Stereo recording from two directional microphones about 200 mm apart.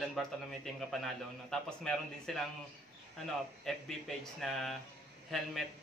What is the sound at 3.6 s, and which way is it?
A man's voice, centre (ahead or behind).